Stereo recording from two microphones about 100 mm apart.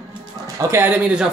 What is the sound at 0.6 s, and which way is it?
Speech, 25° right (ahead or behind).